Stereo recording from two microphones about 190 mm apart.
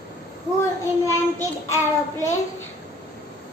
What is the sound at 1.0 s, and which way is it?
Child singing, 15° left (ahead or behind).